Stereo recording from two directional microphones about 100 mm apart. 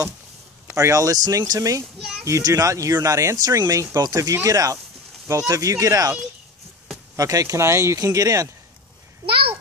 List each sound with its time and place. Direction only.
0.7 s speech: 30° right (ahead or behind)
7.2 s speech: 35° right (ahead or behind)